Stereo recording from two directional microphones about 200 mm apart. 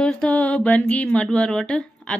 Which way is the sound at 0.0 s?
5° left (ahead or behind).